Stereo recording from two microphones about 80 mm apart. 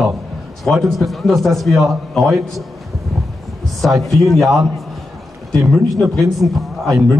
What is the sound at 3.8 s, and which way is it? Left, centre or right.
Speech, centre.